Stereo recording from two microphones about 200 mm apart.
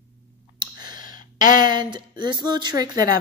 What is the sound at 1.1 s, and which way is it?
A woman's voice, 20° right (ahead or behind).